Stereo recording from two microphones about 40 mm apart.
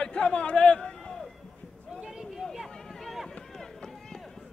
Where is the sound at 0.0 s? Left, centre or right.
Left.